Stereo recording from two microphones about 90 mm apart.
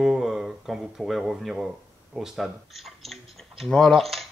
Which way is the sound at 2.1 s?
5° right (ahead or behind).